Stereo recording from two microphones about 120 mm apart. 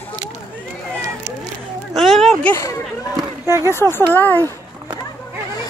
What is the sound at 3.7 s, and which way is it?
Speech, 20° left (ahead or behind).